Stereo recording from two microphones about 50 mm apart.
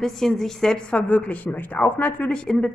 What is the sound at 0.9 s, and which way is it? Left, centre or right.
A woman's voice, left.